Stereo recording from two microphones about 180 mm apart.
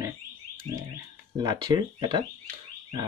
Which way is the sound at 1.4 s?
25° right (ahead or behind).